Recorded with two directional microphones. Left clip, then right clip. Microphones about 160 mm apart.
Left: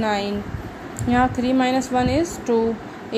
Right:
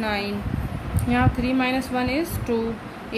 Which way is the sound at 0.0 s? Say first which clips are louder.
Left 4 dB; 25° left (ahead or behind).